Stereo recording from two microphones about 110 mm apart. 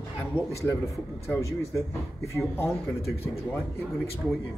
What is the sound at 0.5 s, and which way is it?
Speech, 25° left (ahead or behind).